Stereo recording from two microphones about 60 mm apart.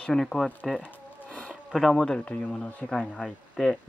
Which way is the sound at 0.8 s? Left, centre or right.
Left.